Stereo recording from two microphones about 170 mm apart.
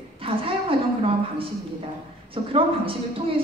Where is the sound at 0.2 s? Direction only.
30° right (ahead or behind).